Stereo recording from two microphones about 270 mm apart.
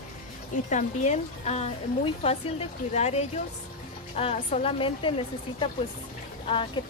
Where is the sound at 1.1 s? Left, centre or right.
Left.